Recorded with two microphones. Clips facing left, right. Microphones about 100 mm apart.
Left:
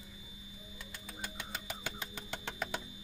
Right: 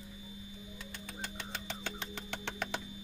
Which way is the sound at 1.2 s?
10° left (ahead or behind).